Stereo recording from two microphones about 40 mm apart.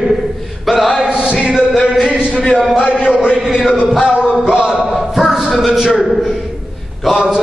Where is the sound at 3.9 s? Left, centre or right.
Centre.